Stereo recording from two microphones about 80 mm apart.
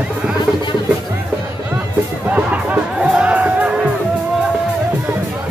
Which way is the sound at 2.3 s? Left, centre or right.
Centre.